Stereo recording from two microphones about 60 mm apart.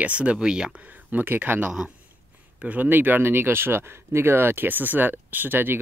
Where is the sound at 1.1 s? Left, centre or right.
Right.